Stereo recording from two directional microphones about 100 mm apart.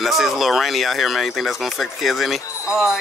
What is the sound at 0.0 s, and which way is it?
Speech, centre (ahead or behind).